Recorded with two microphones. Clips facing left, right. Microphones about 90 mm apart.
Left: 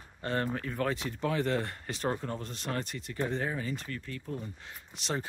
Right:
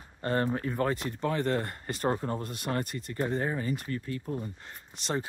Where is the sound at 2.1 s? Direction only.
20° right (ahead or behind).